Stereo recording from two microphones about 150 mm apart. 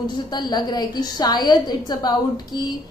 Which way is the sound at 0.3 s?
30° left (ahead or behind).